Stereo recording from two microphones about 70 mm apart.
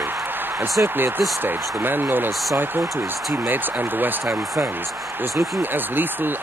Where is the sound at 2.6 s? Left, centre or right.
Right.